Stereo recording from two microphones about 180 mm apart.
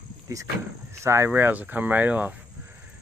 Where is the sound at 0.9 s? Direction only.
15° right (ahead or behind).